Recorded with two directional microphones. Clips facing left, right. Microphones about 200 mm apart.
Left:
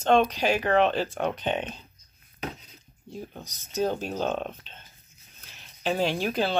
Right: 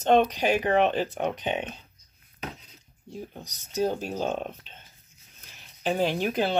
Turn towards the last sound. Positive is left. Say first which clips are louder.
# right 1 dB
turn(degrees=-20)  # may be behind; listen again after turning